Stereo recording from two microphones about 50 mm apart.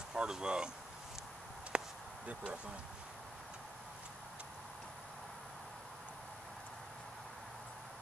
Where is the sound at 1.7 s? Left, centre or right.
Right.